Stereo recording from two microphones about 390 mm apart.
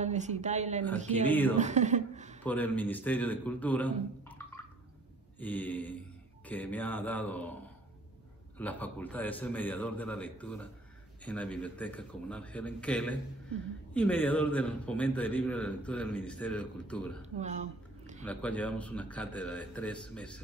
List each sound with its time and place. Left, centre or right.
0.0 s speech: centre
1.2 s a man's voice: centre
1.6 s speech: centre
2.4 s a man's voice: centre
5.4 s a man's voice: centre
8.5 s a man's voice: centre
17.4 s a sound: centre
18.2 s a man's voice: centre